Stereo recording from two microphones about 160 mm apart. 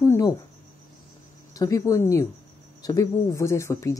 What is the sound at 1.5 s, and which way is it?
Speech, 20° left (ahead or behind).